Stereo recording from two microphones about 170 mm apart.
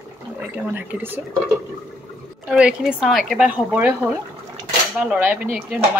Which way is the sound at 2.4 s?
5° right (ahead or behind).